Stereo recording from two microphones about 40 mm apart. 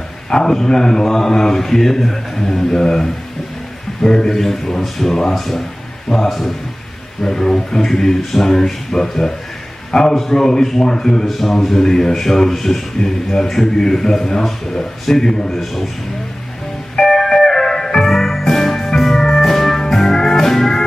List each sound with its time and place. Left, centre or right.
0.3 s a man's voice: centre
11.2 s a man's voice: centre
16.9 s music: centre